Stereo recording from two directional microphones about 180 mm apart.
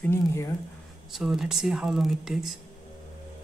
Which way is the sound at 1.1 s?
Centre (ahead or behind).